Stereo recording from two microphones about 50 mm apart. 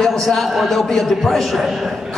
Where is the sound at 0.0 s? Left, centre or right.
Centre.